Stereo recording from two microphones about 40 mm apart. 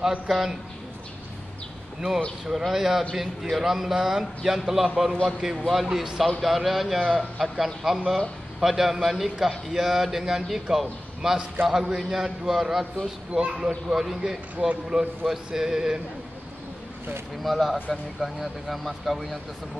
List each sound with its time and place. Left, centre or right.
0.3 s a man's voice: centre
2.0 s speech: centre
2.4 s a man's voice: centre
17.4 s speech: centre